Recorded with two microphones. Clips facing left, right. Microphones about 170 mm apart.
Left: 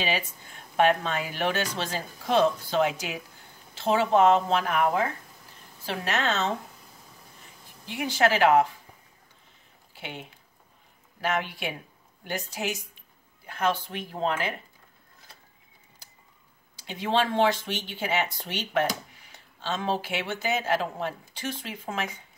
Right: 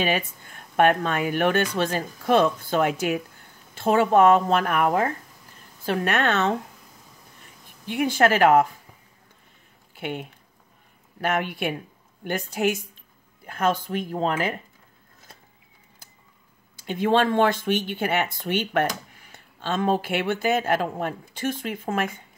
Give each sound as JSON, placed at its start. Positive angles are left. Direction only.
{"t": 0.0, "sound": "speech", "side_deg": -55}
{"t": 7.8, "sound": "speech", "side_deg": -55}
{"t": 9.9, "sound": "speech", "side_deg": -55}
{"t": 16.7, "sound": "speech", "side_deg": -50}